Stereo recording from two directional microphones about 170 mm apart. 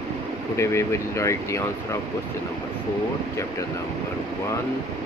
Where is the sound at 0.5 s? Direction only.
15° left (ahead or behind).